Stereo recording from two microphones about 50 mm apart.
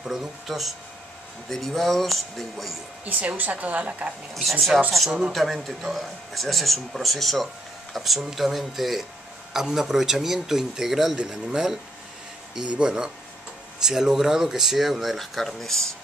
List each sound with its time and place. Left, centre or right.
0.0 s speech: centre
3.1 s a woman's voice: right
4.3 s speech: centre
12.5 s speech: centre